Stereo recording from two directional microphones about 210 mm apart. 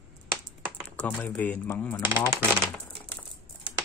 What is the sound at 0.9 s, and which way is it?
Speech, 10° left (ahead or behind).